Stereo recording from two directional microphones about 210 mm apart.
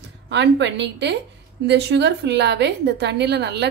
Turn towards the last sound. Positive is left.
turn(degrees=-55)  # may be behind; listen again after turning